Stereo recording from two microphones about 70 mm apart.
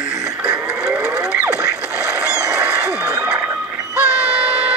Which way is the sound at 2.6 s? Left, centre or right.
Right.